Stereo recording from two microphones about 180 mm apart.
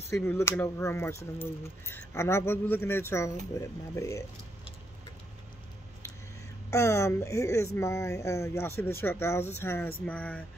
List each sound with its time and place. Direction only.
0.1 s speech: 15° left (ahead or behind)
6.7 s speech: 15° left (ahead or behind)